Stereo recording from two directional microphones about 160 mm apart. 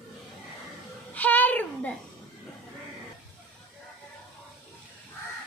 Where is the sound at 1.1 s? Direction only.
10° left (ahead or behind).